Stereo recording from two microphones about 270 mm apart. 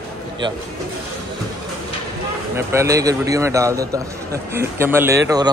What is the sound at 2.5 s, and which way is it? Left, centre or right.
A man's voice, centre.